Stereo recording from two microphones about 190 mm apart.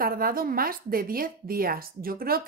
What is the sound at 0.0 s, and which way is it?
Speech, 50° right (ahead or behind).